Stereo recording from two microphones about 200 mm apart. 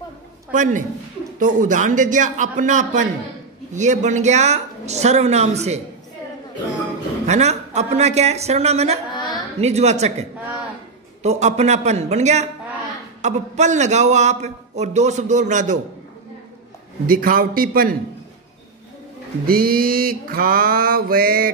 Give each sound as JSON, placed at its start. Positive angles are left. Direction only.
{"t": 0.5, "sound": "a man's voice", "side_deg": -40}
{"t": 7.2, "sound": "a man's voice", "side_deg": -35}
{"t": 11.2, "sound": "a man's voice", "side_deg": -35}
{"t": 17.0, "sound": "mantra", "side_deg": -45}
{"t": 19.4, "sound": "mantra", "side_deg": -45}